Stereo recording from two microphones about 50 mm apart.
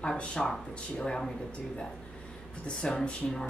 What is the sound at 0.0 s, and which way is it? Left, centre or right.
A woman's voice, centre.